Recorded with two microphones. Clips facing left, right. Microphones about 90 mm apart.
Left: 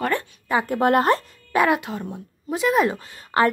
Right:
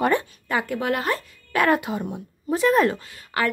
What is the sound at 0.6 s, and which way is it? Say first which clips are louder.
Speech: left 10 dB; 40° left (ahead or behind).